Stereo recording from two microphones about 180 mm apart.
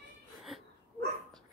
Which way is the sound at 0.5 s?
Centre (ahead or behind).